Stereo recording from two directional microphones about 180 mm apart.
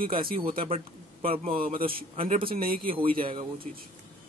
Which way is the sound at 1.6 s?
50° right (ahead or behind).